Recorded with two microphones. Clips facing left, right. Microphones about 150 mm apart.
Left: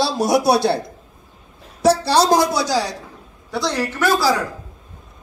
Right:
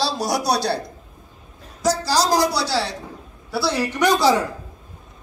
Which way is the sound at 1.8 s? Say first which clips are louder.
Left 5 dB; 60° left (ahead or behind).